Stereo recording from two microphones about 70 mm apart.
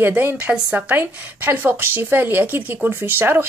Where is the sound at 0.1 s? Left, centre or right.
Right.